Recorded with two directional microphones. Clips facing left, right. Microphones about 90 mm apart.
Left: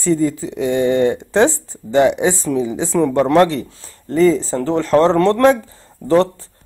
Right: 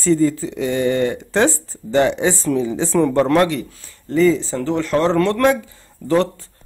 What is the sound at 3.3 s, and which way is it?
Speech, 30° left (ahead or behind).